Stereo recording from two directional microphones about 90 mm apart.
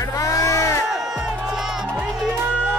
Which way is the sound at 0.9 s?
5° right (ahead or behind).